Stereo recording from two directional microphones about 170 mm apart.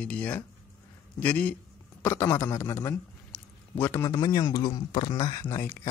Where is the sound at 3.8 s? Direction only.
15° left (ahead or behind).